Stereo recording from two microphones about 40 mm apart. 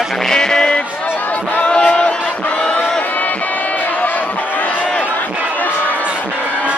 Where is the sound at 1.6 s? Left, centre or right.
Left.